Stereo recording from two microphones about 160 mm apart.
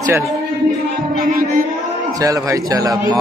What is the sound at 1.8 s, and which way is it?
A man's voice, 20° right (ahead or behind).